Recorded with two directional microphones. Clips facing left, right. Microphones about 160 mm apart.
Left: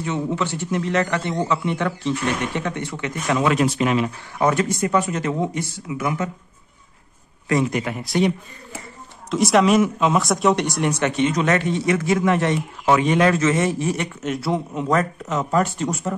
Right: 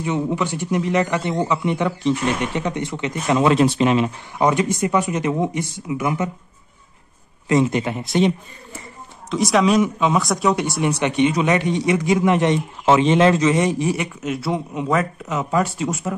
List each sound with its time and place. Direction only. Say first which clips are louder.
0.0 s a man's voice: right 2 dB; 15° right (ahead or behind)
7.4 s speech: right 3 dB; 25° right (ahead or behind)
9.3 s a man's voice: left 1 dB; centre (ahead or behind)
14.2 s speech: left 2 dB; centre (ahead or behind)